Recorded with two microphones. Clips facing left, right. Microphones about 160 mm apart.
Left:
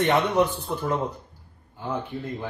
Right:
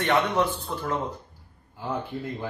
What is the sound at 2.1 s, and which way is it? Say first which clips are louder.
Music: even; centre (ahead or behind).